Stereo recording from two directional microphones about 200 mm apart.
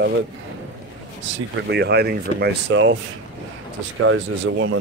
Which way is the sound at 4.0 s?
75° right (ahead or behind).